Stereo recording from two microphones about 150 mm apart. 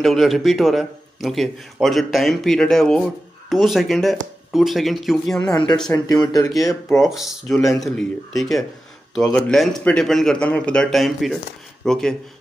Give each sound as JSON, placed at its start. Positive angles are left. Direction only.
{"t": 0.0, "sound": "a man's voice", "side_deg": 0}
{"t": 5.4, "sound": "speech", "side_deg": 25}
{"t": 7.2, "sound": "a man's voice", "side_deg": 0}